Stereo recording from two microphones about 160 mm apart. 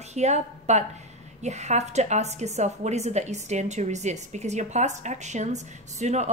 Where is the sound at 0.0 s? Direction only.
45° right (ahead or behind).